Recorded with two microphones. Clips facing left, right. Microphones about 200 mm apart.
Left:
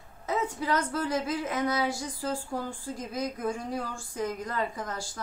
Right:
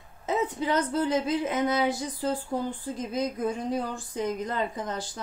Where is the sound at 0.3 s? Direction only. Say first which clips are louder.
Right 2 dB; 20° right (ahead or behind).